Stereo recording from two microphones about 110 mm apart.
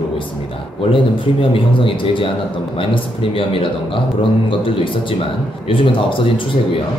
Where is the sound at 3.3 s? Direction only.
55° left (ahead or behind).